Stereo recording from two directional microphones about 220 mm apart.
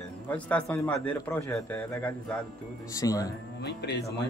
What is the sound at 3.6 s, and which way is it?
Speech, 50° left (ahead or behind).